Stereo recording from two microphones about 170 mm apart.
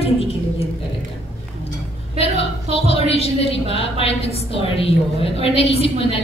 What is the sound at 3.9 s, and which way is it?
A woman's voice, 35° left (ahead or behind).